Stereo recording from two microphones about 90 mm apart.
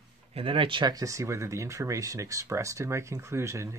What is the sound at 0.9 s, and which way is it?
Speech, 35° right (ahead or behind).